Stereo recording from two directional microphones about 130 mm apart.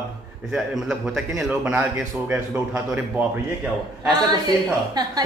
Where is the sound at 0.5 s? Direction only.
Centre (ahead or behind).